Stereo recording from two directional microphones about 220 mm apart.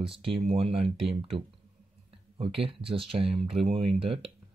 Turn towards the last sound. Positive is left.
turn(degrees=-25)  # may be behind; listen again after turning